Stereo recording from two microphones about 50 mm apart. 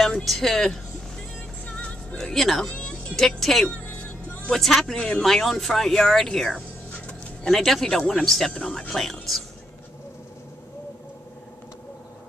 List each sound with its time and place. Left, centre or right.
0.0 s speech: centre
1.7 s music: left
2.1 s speech: centre
2.7 s music: left
3.2 s speech: centre
3.7 s music: left
4.5 s speech: centre
4.9 s speech: left
5.2 s speech: centre
8.5 s speech: left
8.9 s speech: centre